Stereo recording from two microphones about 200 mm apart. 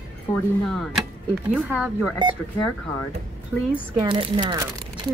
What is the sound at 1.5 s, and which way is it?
Speech, 5° right (ahead or behind).